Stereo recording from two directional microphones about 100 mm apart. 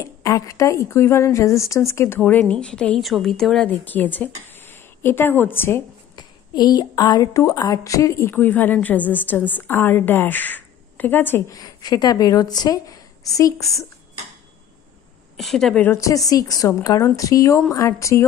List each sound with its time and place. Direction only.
0.0 s a woman's voice: 35° left (ahead or behind); by 3.6 s 5° left (ahead or behind)
3.6 s a woman's voice: 15° left (ahead or behind)
6.1 s a woman's voice: 40° left (ahead or behind)
8.4 s a woman's voice: 20° left (ahead or behind)
11.4 s a woman's voice: 40° left (ahead or behind)
15.3 s a woman's voice: centre (ahead or behind)
16.0 s a woman's voice: 35° left (ahead or behind)